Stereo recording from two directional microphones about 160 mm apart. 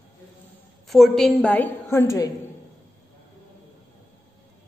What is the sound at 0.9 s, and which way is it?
A woman's voice, centre (ahead or behind).